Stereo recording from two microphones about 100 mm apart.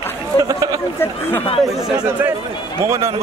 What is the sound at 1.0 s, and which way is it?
Speech, 25° left (ahead or behind).